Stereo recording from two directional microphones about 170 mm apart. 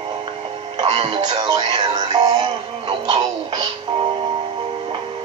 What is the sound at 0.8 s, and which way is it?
Music, 35° right (ahead or behind).